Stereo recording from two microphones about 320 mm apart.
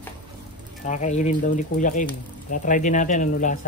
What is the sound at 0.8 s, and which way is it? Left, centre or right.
Speech, left.